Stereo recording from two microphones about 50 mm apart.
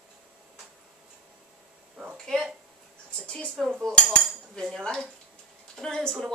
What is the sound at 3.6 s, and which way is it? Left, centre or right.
Speech, centre.